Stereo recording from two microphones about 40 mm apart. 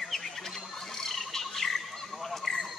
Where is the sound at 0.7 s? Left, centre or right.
Centre.